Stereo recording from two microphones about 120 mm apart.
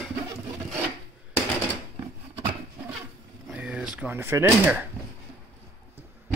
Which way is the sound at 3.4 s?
5° right (ahead or behind).